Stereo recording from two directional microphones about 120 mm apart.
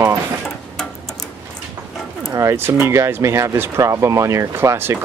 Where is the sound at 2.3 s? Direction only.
25° right (ahead or behind).